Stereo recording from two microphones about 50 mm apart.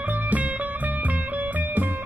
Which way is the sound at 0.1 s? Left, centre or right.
Right.